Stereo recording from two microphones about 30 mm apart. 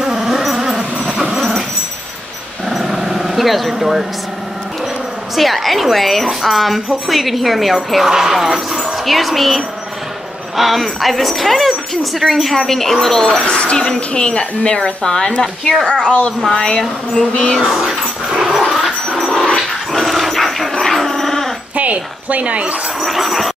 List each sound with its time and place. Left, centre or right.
0.0 s a sound: centre
2.7 s dog: centre
5.3 s a woman's voice: centre
8.0 s a woman's voice: centre
12.4 s a woman's voice: centre
13.5 s a woman's voice: left
16.5 s speech: left
17.6 s dog: centre
18.6 s dog: centre
21.7 s speech: right
22.9 s a sound: centre